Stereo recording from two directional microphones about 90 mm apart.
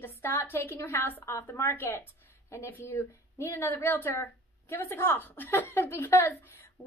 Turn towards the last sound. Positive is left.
turn(degrees=30)  # may be behind; listen again after turning